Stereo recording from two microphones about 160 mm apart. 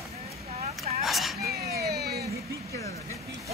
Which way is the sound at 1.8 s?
85° right.